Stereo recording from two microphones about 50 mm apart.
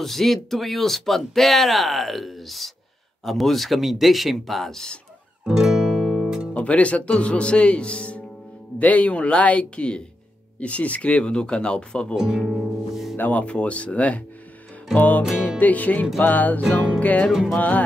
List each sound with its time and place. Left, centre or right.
0.0 s speech: centre
5.4 s music: centre
6.5 s speech: left
12.2 s music: centre
13.2 s music: left
13.5 s speech: left
15.0 s music: left